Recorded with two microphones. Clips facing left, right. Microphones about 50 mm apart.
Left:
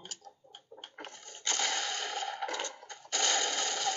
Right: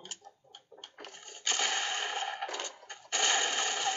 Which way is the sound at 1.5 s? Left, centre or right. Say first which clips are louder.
Right 1 dB; right.